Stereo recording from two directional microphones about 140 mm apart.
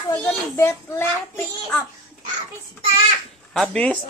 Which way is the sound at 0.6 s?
20° left (ahead or behind).